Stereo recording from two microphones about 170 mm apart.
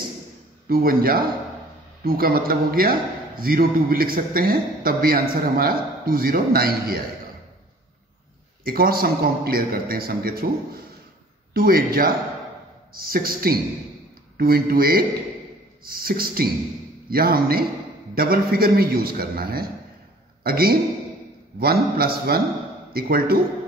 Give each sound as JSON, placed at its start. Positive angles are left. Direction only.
{"t": 0.7, "sound": "a man's voice", "side_deg": -60}
{"t": 8.6, "sound": "a man's voice", "side_deg": -60}
{"t": 11.5, "sound": "a man's voice", "side_deg": -60}